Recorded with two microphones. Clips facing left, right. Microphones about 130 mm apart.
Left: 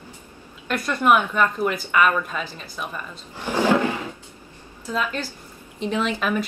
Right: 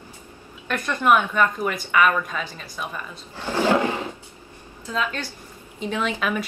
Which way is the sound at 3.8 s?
15° right (ahead or behind).